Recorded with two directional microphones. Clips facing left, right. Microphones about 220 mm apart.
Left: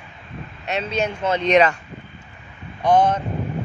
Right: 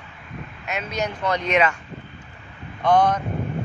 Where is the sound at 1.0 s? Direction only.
25° left (ahead or behind).